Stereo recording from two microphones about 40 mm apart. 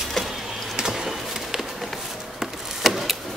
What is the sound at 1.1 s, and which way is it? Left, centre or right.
Pigeon, centre.